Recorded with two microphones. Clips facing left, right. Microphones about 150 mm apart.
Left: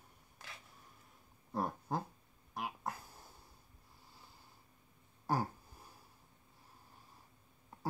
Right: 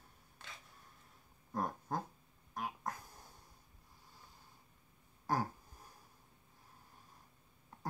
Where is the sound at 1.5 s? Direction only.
10° left (ahead or behind).